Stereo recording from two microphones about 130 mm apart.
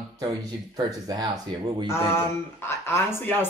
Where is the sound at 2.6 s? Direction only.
20° left (ahead or behind).